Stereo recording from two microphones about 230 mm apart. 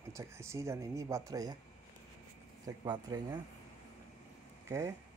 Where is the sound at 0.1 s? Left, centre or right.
Centre.